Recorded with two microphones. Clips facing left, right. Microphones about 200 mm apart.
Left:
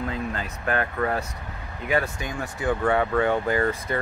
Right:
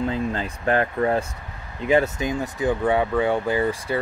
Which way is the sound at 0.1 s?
30° right (ahead or behind).